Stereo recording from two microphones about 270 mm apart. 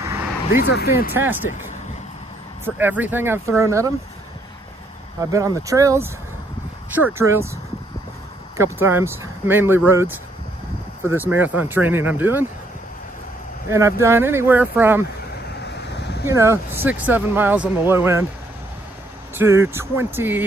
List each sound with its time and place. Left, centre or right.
0.0 s vehicle: centre
0.5 s speech: left
1.1 s speech: centre
2.6 s speech: centre
5.3 s speech: centre
8.5 s speech: centre
13.7 s speech: centre
16.3 s speech: centre
19.3 s speech: centre